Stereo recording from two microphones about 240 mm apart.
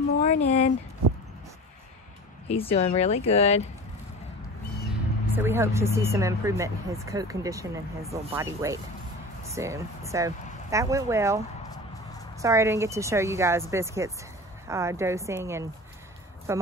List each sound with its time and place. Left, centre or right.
0.2 s speech: left
2.4 s speech: left
5.3 s speech: centre